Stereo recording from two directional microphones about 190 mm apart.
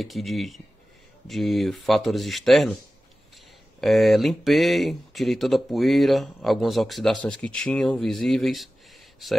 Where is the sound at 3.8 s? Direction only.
Centre (ahead or behind).